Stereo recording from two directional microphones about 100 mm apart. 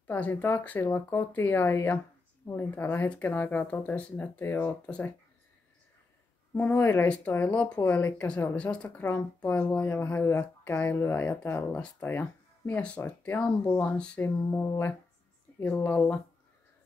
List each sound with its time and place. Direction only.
0.0 s speech: 15° left (ahead or behind)
4.8 s speech: 10° left (ahead or behind)
6.7 s speech: 20° left (ahead or behind)